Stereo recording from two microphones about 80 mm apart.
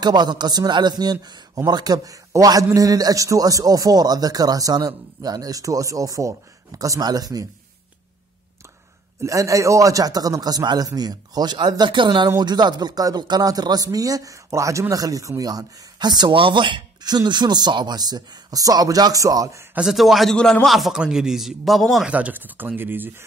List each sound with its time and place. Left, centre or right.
0.0 s a man's voice: right
9.2 s a man's voice: right
11.7 s speech: right
12.4 s a man's voice: right
19.8 s a man's voice: centre
22.0 s speech: centre